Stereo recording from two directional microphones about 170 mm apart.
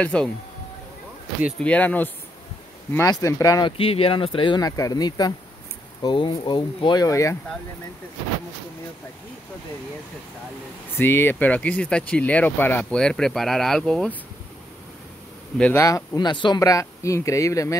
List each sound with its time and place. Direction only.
0.0 s speech: 5° left (ahead or behind)
1.6 s speech: 10° left (ahead or behind)
3.7 s speech: 35° left (ahead or behind); by 7.3 s 20° left (ahead or behind)
11.0 s speech: 15° left (ahead or behind)
15.5 s speech: 5° left (ahead or behind)
16.2 s speech: 25° left (ahead or behind)